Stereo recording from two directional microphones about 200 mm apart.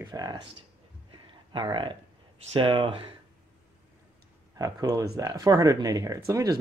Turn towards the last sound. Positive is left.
turn(degrees=-15)  # may be behind; listen again after turning